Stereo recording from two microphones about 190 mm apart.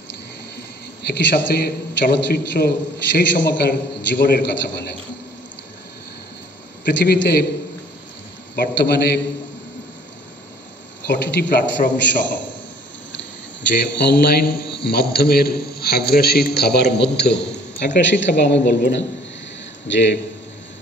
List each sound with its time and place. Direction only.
1.0 s a man's voice: 60° left (ahead or behind)
6.8 s a man's voice: 65° left (ahead or behind)
8.5 s a man's voice: 60° left (ahead or behind)
11.1 s a man's voice: 65° left (ahead or behind)
13.9 s a man's voice: 60° left (ahead or behind)